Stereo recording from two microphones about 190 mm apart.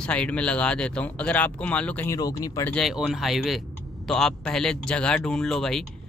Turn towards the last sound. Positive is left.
turn(degrees=0)  # may be behind; listen again after turning